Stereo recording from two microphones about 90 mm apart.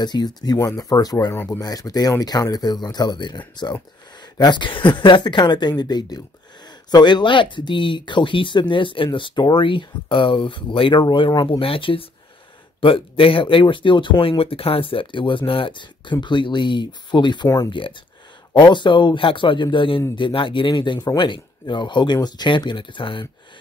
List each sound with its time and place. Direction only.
0.0 s speech: 50° left (ahead or behind)
1.3 s speech: 25° left (ahead or behind)
1.6 s speech: 45° left (ahead or behind)
11.6 s speech: 85° left; by 14.4 s 60° left (ahead or behind)
14.4 s speech: 90° left; by 17.5 s 55° left (ahead or behind)
17.6 s speech: 70° left (ahead or behind)
18.5 s speech: 60° left (ahead or behind)